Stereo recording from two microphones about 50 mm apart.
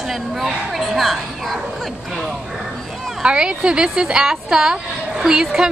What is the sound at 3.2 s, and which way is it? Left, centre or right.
A woman's voice, centre.